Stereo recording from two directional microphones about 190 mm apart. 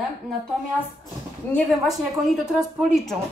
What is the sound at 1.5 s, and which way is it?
A woman's voice, centre (ahead or behind).